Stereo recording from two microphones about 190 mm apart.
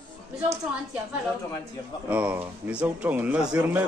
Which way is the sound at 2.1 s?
10° right (ahead or behind).